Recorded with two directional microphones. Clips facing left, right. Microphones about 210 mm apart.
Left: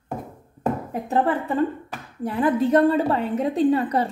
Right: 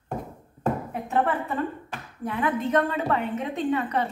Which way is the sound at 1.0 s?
35° left (ahead or behind).